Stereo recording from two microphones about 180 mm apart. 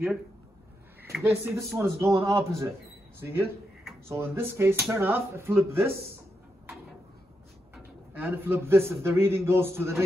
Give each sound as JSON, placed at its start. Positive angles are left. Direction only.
{"t": 1.1, "sound": "a man's voice", "side_deg": -10}
{"t": 8.1, "sound": "a man's voice", "side_deg": -10}